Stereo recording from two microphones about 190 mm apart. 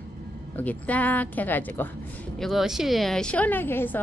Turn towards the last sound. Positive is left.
turn(degrees=10)  # may be behind; listen again after turning